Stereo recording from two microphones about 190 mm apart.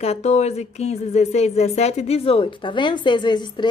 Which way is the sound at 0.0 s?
35° left (ahead or behind).